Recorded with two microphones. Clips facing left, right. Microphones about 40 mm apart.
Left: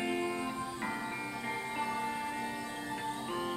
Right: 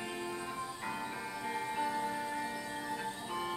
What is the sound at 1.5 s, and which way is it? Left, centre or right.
Music, centre.